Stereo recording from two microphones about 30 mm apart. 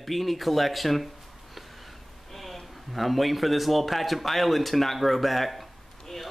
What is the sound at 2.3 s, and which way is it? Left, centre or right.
A man's voice, centre.